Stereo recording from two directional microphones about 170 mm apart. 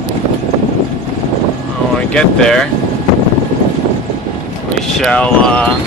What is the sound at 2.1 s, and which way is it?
Speech, 5° left (ahead or behind).